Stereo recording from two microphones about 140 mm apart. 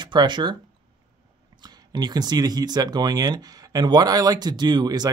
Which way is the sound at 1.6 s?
30° right (ahead or behind).